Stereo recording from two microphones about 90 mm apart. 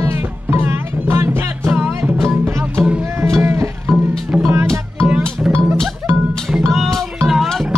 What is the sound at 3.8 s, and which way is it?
Music, centre (ahead or behind).